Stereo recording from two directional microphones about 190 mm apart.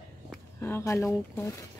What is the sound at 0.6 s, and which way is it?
Speech, 15° left (ahead or behind).